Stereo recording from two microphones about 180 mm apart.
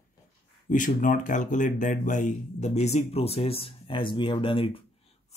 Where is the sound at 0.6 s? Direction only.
45° left (ahead or behind).